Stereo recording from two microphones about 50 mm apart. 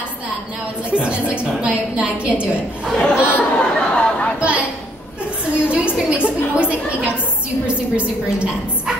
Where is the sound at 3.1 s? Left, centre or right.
Left.